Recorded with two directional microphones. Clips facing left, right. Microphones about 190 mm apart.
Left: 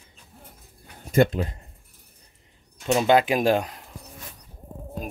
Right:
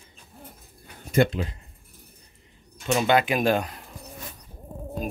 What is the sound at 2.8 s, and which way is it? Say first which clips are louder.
Speech: left 2 dB; 30° left (ahead or behind).